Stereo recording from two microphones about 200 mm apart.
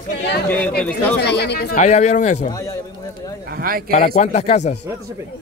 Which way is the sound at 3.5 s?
45° right (ahead or behind).